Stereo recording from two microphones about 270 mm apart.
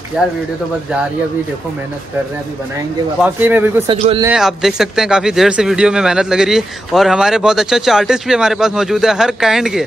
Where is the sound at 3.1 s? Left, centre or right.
Centre.